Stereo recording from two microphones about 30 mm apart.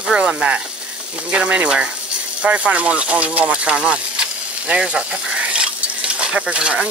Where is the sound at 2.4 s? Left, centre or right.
Right.